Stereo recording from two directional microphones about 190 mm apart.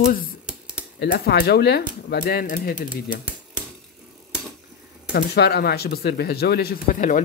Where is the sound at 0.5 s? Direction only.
5° right (ahead or behind).